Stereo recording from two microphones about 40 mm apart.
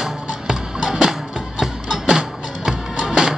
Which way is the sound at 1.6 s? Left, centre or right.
Centre.